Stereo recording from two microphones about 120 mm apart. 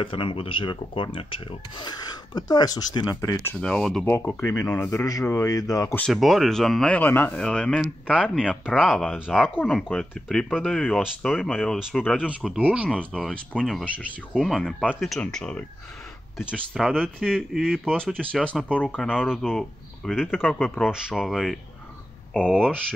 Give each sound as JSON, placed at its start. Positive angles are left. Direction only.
{"t": 0.0, "sound": "speech", "side_deg": 45}
{"t": 1.8, "sound": "speech", "side_deg": 35}
{"t": 3.3, "sound": "speech", "side_deg": 5}
{"t": 4.0, "sound": "speech", "side_deg": 15}
{"t": 4.8, "sound": "speech", "side_deg": 30}
{"t": 5.9, "sound": "speech", "side_deg": 5}
{"t": 19.0, "sound": "speech", "side_deg": -5}